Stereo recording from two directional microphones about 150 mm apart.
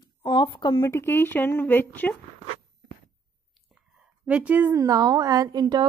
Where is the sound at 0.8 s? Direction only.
15° left (ahead or behind).